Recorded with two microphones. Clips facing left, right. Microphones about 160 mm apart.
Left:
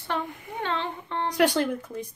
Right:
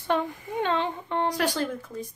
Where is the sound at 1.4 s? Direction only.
20° left (ahead or behind).